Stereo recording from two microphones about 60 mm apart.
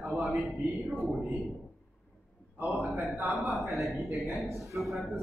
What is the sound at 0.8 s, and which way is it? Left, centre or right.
Speech, centre.